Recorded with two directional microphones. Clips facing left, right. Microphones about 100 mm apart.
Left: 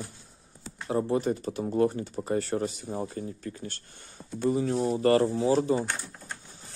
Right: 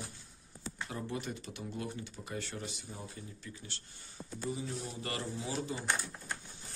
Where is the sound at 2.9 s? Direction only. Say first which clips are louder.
Left 13 dB; 55° left (ahead or behind).